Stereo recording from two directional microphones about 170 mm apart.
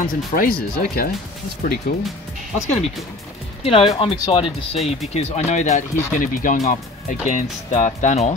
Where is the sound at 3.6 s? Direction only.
35° left (ahead or behind).